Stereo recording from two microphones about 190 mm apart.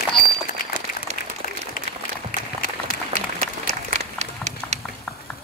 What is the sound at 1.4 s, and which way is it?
Applause, 50° left (ahead or behind).